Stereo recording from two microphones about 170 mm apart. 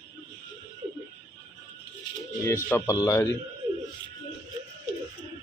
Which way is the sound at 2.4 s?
15° left (ahead or behind).